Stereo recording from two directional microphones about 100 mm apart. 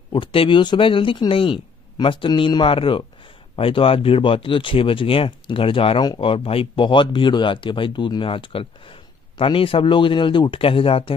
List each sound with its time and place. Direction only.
0.1 s speech: 60° left (ahead or behind)